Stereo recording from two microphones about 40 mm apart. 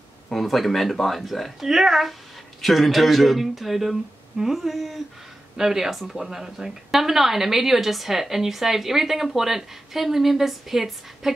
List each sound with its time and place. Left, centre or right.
0.3 s speech: centre